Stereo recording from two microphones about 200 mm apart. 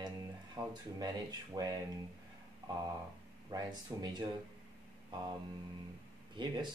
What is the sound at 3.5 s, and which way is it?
Speech, 20° right (ahead or behind).